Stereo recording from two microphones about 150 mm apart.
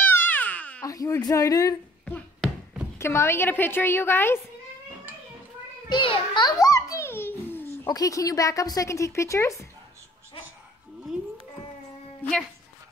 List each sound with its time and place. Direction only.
0.0 s crying: 15° left (ahead or behind)
0.8 s a woman's voice: 20° left (ahead or behind)
2.0 s a sound: 10° left (ahead or behind)
3.0 s a woman's voice: 15° left (ahead or behind)
5.9 s a sound: 35° left (ahead or behind); by 7.9 s 15° left (ahead or behind)
7.9 s a woman's voice: 25° left (ahead or behind)